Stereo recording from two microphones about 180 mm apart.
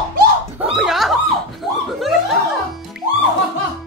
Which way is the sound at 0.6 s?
Centre (ahead or behind).